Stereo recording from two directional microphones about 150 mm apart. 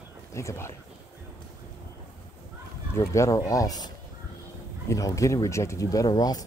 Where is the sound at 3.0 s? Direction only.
20° left (ahead or behind).